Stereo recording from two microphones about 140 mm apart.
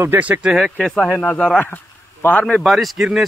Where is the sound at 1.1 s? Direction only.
10° left (ahead or behind).